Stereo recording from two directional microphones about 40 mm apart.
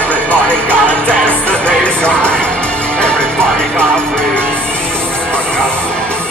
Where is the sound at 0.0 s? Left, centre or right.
Left.